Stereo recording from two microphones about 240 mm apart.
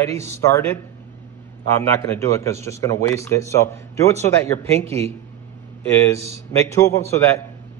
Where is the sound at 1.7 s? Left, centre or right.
Centre.